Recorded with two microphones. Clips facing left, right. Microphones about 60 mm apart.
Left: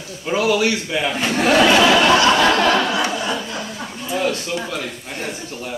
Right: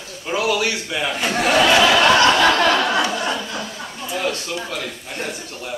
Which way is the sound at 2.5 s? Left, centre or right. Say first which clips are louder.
Even; left.